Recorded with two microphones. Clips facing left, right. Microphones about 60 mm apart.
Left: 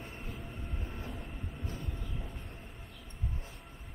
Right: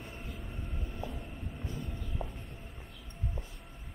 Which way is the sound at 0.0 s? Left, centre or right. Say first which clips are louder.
Even; centre.